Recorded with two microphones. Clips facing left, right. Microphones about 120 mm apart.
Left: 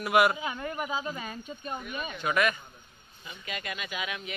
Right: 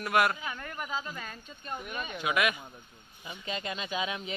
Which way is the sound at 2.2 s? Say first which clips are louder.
Left 2 dB; 5° right (ahead or behind).